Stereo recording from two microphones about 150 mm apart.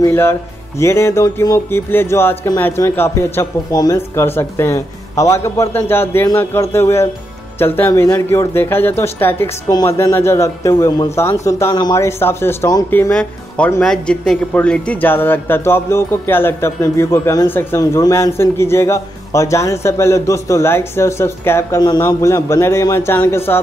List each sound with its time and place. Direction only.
0.0 s speech: 15° left (ahead or behind)
13.1 s speech: 5° left (ahead or behind)